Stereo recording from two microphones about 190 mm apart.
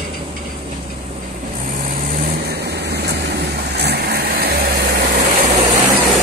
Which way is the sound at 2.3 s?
60° right (ahead or behind).